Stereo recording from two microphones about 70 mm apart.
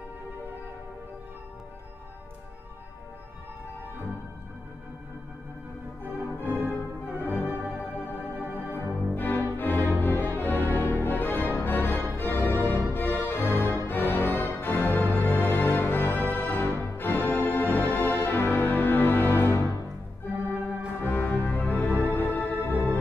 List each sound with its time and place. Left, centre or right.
6.4 s music: right
8.4 s organ: right
9.1 s music: left
16.3 s organ: left
16.9 s music: left
21.0 s music: left